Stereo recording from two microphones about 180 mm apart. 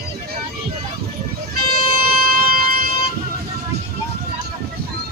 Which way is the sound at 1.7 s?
55° right (ahead or behind).